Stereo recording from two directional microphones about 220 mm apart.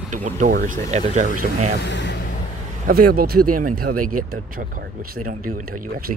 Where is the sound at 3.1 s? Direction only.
40° right (ahead or behind).